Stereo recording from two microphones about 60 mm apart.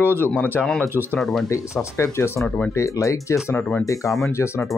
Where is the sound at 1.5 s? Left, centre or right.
Left.